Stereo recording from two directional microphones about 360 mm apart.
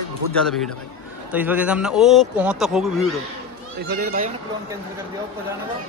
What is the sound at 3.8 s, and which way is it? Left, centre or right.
Speech, right.